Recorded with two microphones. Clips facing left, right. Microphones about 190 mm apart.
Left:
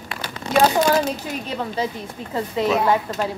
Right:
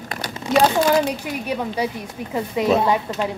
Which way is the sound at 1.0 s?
15° right (ahead or behind).